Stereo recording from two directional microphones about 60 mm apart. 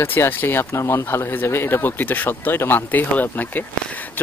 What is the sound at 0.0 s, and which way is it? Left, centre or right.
Speech, left.